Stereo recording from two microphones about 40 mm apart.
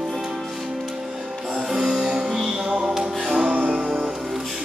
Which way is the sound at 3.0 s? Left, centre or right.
Centre.